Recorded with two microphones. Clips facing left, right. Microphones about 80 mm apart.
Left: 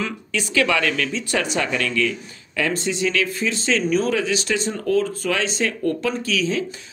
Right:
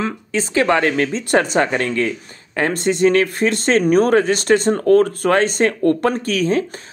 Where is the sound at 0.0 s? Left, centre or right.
Right.